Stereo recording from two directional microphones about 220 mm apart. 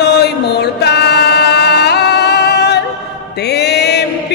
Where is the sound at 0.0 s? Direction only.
50° left (ahead or behind).